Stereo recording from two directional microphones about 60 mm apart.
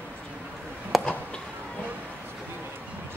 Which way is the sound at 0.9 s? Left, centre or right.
Centre.